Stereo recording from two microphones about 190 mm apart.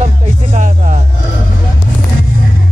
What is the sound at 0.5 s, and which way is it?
Music, 40° right (ahead or behind).